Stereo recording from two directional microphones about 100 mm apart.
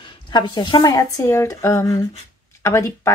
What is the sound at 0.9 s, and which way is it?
A woman's voice, 30° left (ahead or behind).